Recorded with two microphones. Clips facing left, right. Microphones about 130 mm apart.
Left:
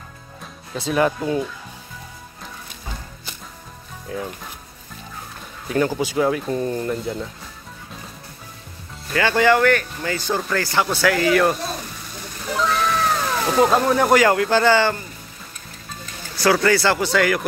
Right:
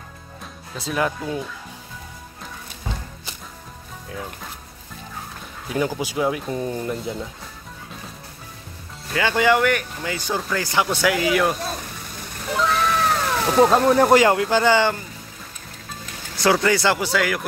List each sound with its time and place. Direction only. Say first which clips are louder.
0.7 s speech: left 4 dB; centre (ahead or behind)
5.7 s speech: left 3 dB; 10° right (ahead or behind)
9.1 s speech: left 2 dB; 10° right (ahead or behind)
12.4 s cat: even; centre (ahead or behind)
14.1 s speech: even; 20° right (ahead or behind)
16.3 s speech: left 1 dB; 20° right (ahead or behind); by 17.5 s 5° right (ahead or behind)